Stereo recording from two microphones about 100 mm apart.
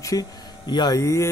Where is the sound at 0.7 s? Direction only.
45° left (ahead or behind).